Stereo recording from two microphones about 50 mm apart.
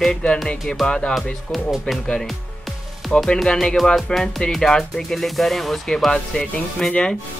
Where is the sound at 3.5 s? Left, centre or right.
Centre.